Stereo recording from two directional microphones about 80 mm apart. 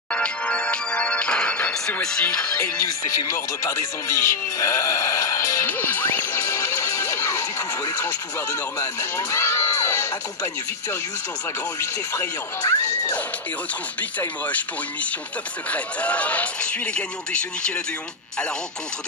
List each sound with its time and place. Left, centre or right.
0.1 s music: centre
3.1 s speech: left
5.7 s music: left
8.7 s speech: left
14.2 s speech: left
15.7 s a man's voice: centre